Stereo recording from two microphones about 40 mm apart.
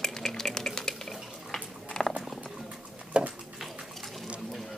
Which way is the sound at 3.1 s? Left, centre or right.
Right.